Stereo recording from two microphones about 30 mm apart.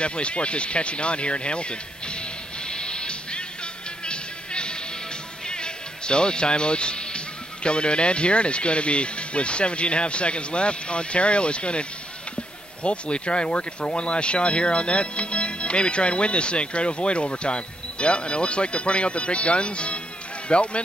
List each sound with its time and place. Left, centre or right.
0.0 s speech: left
2.7 s music: left
7.6 s speech: left
12.8 s speech: left